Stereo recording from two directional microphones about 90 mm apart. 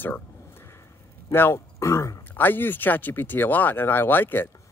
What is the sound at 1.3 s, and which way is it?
Speech, 25° left (ahead or behind).